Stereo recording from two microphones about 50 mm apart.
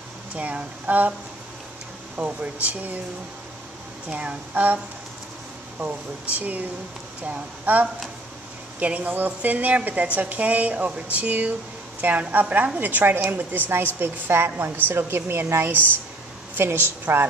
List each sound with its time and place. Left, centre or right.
0.4 s a woman's voice: right
2.1 s speech: right
4.1 s speech: right
6.3 s a woman's voice: right